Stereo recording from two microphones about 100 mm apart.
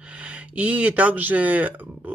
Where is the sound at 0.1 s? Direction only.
10° right (ahead or behind).